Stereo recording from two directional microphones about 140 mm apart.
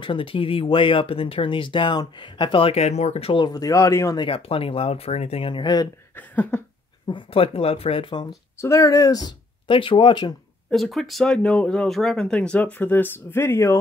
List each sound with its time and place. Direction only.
0.0 s speech: 40° left (ahead or behind); by 4.2 s 20° left (ahead or behind)
4.2 s speech: 40° left (ahead or behind)
6.1 s a sound: 10° left (ahead or behind)
7.1 s speech: 40° left (ahead or behind)
8.5 s speech: 20° left (ahead or behind)
10.7 s speech: centre (ahead or behind); by 13.7 s 20° left (ahead or behind)